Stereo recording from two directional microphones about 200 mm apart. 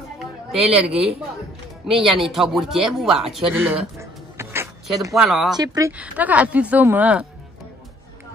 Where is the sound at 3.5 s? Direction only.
10° right (ahead or behind).